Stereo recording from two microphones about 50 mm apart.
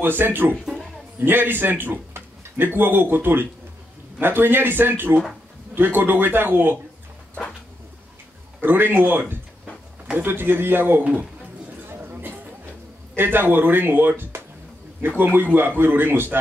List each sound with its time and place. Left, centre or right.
0.0 s speech: right
8.5 s speech: right
11.8 s a sound: right
13.1 s a man's voice: right